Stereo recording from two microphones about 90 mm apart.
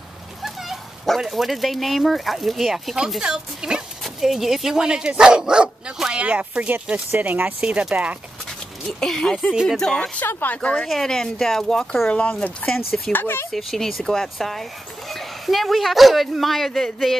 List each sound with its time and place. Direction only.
0.4 s speech: centre (ahead or behind)
9.0 s speech: 5° left (ahead or behind)
12.1 s speech: 15° left (ahead or behind)
13.1 s speech: 25° left (ahead or behind)
13.5 s speech: centre (ahead or behind)